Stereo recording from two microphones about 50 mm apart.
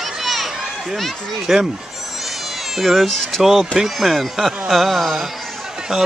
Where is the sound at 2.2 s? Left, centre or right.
Centre.